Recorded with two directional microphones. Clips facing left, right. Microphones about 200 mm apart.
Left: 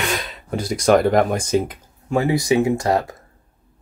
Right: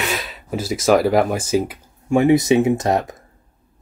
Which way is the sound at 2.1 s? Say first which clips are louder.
Right 4 dB; 20° right (ahead or behind).